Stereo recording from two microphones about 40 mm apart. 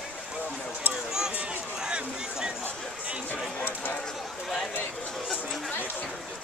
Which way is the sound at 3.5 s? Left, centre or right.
Left.